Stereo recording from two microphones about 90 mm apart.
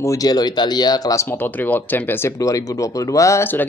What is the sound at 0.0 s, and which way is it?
Speech, 40° left (ahead or behind).